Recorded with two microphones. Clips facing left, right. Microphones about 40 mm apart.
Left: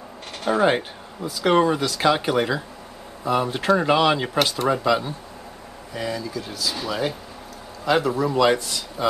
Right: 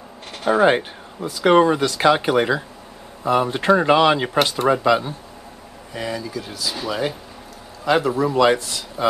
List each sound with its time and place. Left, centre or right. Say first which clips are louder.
0.4 s speech: right 3 dB; centre